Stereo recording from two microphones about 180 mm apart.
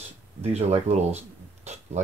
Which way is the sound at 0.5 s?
35° right (ahead or behind).